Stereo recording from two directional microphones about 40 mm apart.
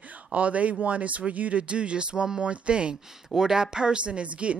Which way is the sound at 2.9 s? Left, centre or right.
Centre.